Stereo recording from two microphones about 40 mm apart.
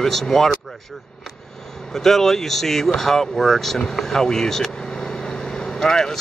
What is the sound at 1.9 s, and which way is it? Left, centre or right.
Speech, centre.